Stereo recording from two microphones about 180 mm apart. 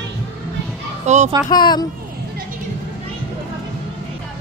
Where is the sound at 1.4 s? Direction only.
25° left (ahead or behind).